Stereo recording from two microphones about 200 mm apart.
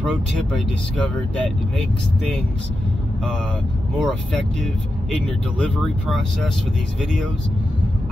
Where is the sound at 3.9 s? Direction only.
Centre (ahead or behind).